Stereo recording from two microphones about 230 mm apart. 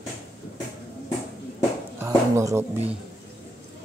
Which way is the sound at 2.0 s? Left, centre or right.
Centre.